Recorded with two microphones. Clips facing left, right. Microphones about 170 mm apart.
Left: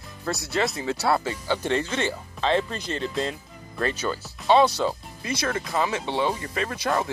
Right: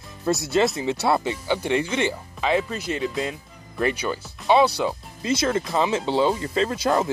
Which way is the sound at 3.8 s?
15° right (ahead or behind).